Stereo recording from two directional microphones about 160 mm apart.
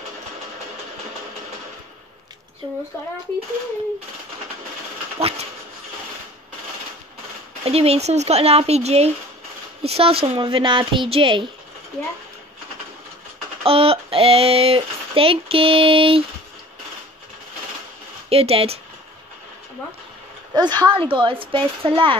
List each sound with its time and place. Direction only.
7.6 s speech: 40° right (ahead or behind)
13.7 s speech: 35° right (ahead or behind)
18.3 s speech: 40° right (ahead or behind)
20.5 s speech: 25° right (ahead or behind)